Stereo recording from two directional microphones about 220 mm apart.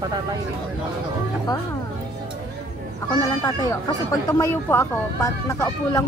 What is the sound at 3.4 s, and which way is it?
Speech, 15° left (ahead or behind).